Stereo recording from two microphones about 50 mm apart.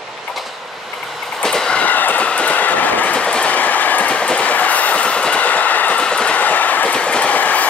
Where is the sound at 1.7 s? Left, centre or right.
Left.